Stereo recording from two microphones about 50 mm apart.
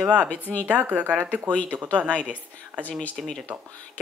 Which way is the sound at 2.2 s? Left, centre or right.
Right.